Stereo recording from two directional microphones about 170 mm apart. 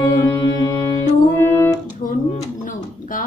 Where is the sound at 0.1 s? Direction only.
25° left (ahead or behind).